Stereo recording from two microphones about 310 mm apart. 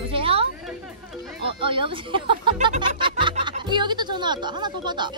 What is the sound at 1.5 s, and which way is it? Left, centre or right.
Speech, centre.